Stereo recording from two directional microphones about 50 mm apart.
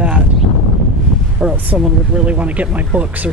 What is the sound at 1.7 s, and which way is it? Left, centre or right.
Speech, right.